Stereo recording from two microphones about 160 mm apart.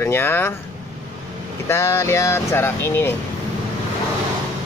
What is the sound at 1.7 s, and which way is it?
Speech, 15° left (ahead or behind).